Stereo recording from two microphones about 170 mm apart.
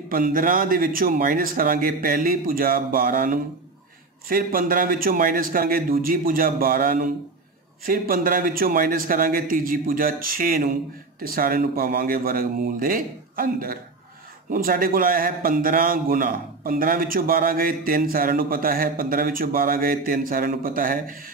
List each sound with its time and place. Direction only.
0.1 s a man's voice: 55° right (ahead or behind)